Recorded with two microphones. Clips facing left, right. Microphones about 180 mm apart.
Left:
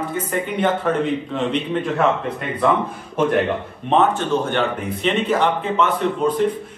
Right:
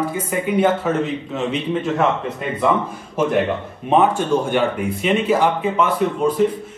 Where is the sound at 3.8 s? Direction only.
10° right (ahead or behind).